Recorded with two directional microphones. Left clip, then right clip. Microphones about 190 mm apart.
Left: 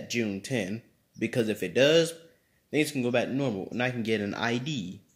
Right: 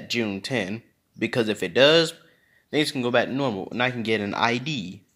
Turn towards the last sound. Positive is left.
turn(degrees=15)  # may be behind; listen again after turning